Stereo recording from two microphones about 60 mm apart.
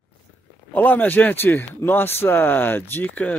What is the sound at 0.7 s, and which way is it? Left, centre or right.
Speech, left.